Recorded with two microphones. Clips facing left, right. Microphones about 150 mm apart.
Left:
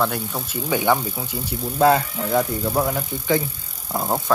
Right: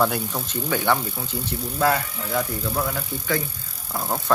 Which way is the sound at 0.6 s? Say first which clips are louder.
Left 3 dB; 15° left (ahead or behind).